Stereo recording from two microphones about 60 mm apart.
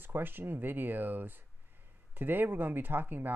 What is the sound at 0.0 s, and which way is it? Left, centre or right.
Speech, right.